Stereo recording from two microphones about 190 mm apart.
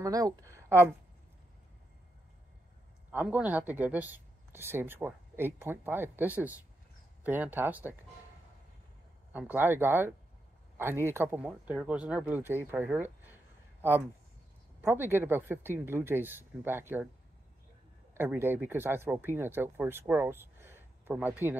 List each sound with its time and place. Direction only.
0.0 s speech: 20° right (ahead or behind)
3.1 s speech: 5° right (ahead or behind)
9.3 s speech: 10° right (ahead or behind)
18.1 s speech: 10° right (ahead or behind)